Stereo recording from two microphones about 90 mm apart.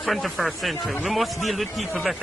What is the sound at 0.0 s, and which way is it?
A man's voice, centre (ahead or behind).